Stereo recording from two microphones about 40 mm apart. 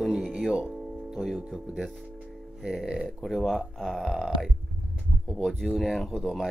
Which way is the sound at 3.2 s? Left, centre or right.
Centre.